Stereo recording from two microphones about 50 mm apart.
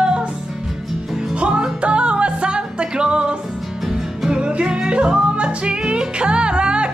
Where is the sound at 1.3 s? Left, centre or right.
Centre.